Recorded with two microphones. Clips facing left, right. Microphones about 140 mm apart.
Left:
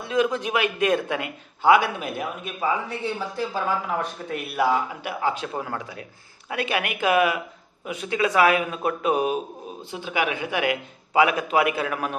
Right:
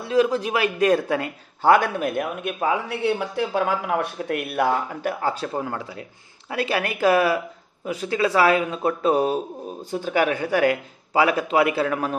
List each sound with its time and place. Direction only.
0.0 s a man's voice: 35° right (ahead or behind); by 4.6 s 55° right (ahead or behind)
5.0 s a man's voice: 40° right (ahead or behind)